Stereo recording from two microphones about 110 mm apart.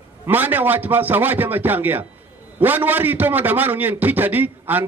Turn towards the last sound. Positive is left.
turn(degrees=-15)  # may be behind; listen again after turning